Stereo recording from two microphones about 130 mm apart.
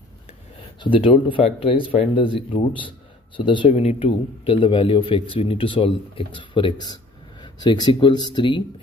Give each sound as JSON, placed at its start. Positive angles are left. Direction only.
{"t": 0.7, "sound": "speech", "side_deg": 40}
{"t": 3.7, "sound": "a man's voice", "side_deg": 50}